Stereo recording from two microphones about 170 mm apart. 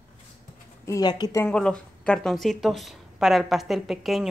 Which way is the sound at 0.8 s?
20° left (ahead or behind).